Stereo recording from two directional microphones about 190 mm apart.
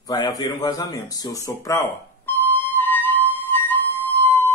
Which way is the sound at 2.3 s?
10° left (ahead or behind).